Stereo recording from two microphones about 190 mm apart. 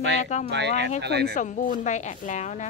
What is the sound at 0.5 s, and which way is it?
Speech, 65° right (ahead or behind).